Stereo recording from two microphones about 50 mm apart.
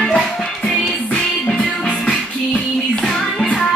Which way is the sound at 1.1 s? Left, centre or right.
Left.